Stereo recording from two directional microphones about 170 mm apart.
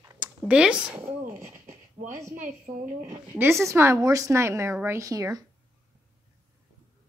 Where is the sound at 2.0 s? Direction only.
50° right (ahead or behind).